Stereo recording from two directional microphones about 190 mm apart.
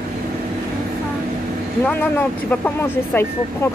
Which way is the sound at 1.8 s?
10° left (ahead or behind).